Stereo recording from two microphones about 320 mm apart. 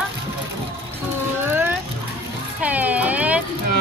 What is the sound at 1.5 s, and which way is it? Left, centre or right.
Music, centre.